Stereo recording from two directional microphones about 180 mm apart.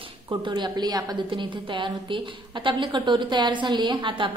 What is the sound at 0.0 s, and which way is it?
A woman's voice, 25° right (ahead or behind).